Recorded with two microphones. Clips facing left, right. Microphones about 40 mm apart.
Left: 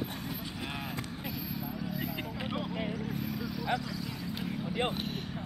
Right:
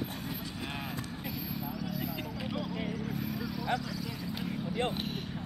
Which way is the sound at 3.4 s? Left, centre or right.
Centre.